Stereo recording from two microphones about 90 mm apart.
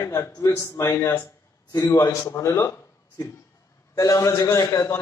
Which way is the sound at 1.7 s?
35° left (ahead or behind).